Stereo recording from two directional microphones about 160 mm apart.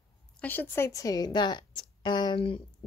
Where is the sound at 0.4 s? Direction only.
10° left (ahead or behind).